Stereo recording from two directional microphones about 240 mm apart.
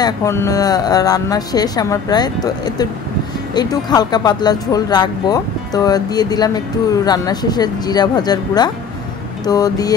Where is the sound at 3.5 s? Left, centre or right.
Centre.